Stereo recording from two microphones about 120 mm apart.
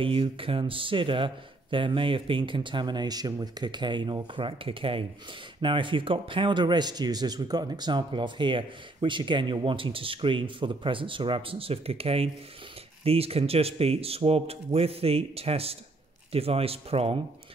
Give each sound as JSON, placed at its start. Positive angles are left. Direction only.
{"t": 0.0, "sound": "speech", "side_deg": -50}